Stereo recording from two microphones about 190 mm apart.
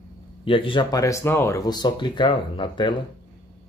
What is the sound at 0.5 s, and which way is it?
Speech, 25° left (ahead or behind).